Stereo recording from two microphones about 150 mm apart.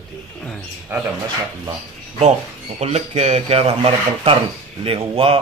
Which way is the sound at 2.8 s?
45° right (ahead or behind).